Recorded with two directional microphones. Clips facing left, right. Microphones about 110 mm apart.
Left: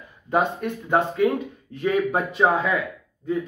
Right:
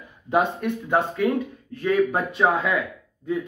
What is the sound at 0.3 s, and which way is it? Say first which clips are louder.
Speech: right 1 dB; centre (ahead or behind).